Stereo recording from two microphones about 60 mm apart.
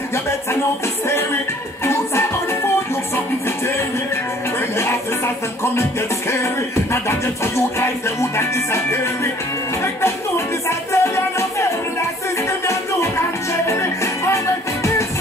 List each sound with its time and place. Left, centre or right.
1.9 s music: left
6.9 s music: left
10.9 s music: left